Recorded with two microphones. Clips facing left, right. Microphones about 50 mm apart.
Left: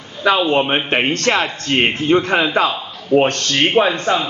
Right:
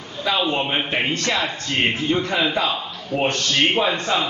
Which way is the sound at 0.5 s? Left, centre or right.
Left.